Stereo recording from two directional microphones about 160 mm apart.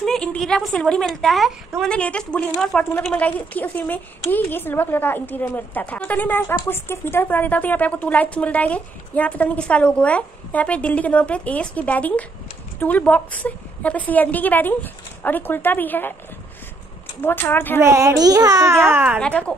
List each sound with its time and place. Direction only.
0.0 s a woman's voice: 5° left (ahead or behind)
17.2 s speech: 15° left (ahead or behind)
17.7 s a woman's voice: 20° right (ahead or behind)
19.1 s speech: 5° left (ahead or behind)